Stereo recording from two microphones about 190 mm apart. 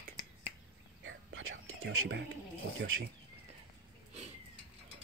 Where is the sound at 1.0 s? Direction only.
90° right.